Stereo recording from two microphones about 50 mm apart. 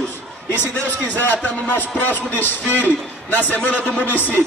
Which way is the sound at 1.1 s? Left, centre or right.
Left.